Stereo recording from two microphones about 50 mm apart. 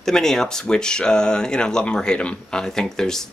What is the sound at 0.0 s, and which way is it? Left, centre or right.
Speech, centre.